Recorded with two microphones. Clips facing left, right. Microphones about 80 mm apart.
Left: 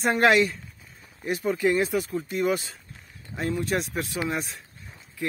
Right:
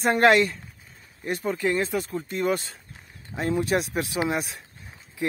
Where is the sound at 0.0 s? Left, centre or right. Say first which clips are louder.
Right 1 dB; centre.